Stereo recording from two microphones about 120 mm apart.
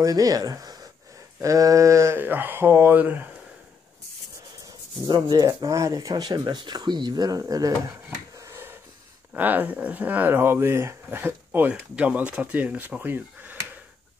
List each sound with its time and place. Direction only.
0.0 s speech: 30° right (ahead or behind)
5.0 s speech: 35° right (ahead or behind)
8.4 s a sound: 20° right (ahead or behind)
9.3 s speech: 15° right (ahead or behind)